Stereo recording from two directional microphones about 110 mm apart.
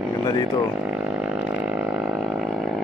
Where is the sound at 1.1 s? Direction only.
10° right (ahead or behind).